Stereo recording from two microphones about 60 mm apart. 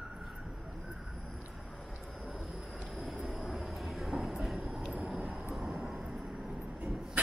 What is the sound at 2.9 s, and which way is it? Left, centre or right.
Train, centre.